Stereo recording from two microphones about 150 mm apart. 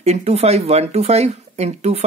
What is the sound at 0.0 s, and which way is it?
Speech, 45° right (ahead or behind).